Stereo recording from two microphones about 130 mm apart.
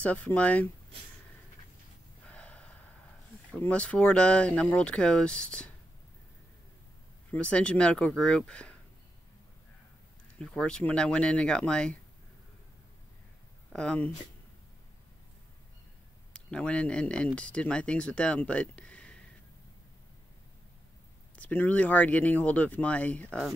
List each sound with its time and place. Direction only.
0.0 s speech: 10° left (ahead or behind)
2.2 s gasp: 10° left (ahead or behind)
3.5 s speech: 10° left (ahead or behind)
7.2 s speech: 10° left (ahead or behind)
10.4 s speech: 5° left (ahead or behind)
13.7 s speech: 5° left (ahead or behind)
16.3 s speech: 10° left (ahead or behind)
21.4 s speech: 10° left (ahead or behind)